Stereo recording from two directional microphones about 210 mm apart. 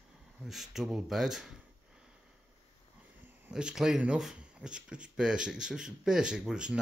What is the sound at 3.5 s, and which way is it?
Speech, 5° right (ahead or behind).